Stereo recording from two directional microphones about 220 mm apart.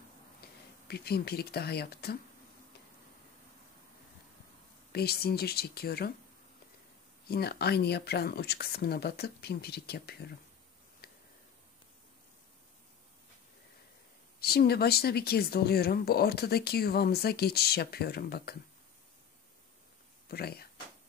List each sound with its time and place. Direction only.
0.8 s speech: 45° left (ahead or behind)
4.9 s speech: 45° left (ahead or behind)
7.2 s speech: 45° left (ahead or behind)
11.0 s a sound: 45° left (ahead or behind)
14.4 s speech: 45° left (ahead or behind)
20.2 s speech: 45° left (ahead or behind)